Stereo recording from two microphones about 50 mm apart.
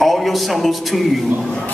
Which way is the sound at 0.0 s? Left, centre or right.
Centre.